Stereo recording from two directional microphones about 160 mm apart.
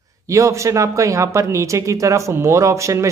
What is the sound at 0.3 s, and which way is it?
Speech, 20° right (ahead or behind).